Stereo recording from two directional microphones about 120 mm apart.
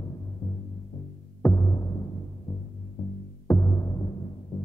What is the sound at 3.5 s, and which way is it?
Music, 30° left (ahead or behind).